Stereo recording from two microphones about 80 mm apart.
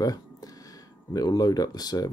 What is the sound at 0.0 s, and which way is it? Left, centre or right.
Speech, left.